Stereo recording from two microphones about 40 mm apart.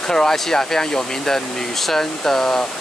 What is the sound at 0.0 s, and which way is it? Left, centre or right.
Speech, centre.